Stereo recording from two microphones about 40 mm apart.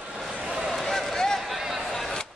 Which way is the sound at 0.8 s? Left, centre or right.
Centre.